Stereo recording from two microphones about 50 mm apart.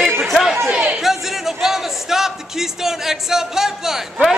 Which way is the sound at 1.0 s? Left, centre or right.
Centre.